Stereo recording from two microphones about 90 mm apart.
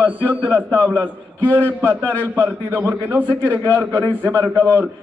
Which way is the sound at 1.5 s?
25° right (ahead or behind).